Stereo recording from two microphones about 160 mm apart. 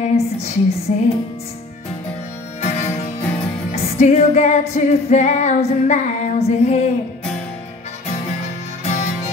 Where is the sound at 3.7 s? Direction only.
40° left (ahead or behind).